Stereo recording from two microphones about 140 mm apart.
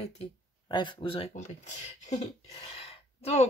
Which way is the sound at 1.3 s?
60° left (ahead or behind).